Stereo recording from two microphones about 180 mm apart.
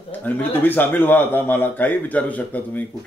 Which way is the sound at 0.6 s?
10° left (ahead or behind).